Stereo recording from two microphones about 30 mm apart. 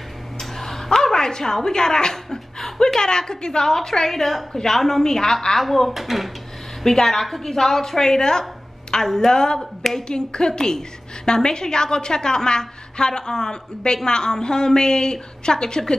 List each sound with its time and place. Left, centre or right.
0.4 s a sound: centre
0.8 s a woman's voice: centre
4.1 s a woman's voice: centre
5.6 s speech: centre
6.8 s a woman's voice: centre